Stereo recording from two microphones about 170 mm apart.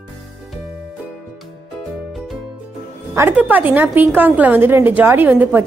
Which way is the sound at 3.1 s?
10° right (ahead or behind).